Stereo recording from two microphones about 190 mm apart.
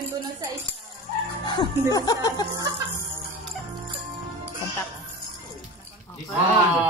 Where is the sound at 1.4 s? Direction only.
25° left (ahead or behind).